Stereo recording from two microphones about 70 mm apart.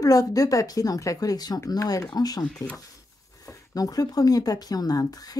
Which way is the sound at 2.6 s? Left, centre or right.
Left.